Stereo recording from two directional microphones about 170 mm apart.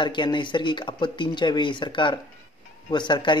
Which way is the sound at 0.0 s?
25° left (ahead or behind).